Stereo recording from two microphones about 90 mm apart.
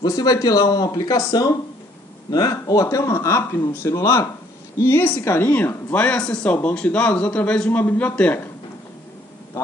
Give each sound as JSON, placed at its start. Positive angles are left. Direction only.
{"t": 0.0, "sound": "speech", "side_deg": 45}
{"t": 5.9, "sound": "a man's voice", "side_deg": 15}